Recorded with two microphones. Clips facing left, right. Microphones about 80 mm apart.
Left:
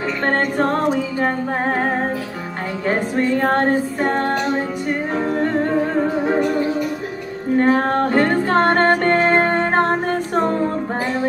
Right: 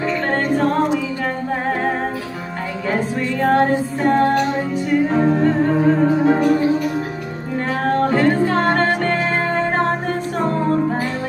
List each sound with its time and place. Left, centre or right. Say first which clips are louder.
1.2 s music: left 2 dB; left
2.9 s music: left 3 dB; left
7.5 s music: left 3 dB; left